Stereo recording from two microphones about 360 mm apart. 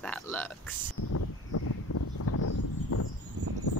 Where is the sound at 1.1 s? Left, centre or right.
Left.